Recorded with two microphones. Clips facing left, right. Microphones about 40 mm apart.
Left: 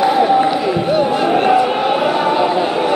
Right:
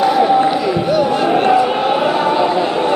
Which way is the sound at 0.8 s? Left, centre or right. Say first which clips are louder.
Even; left.